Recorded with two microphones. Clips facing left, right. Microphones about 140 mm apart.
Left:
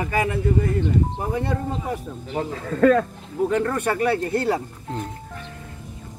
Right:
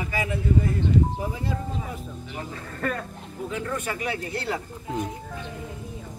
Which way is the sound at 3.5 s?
60° left (ahead or behind).